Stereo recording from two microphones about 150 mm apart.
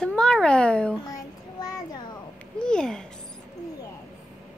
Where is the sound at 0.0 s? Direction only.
5° left (ahead or behind).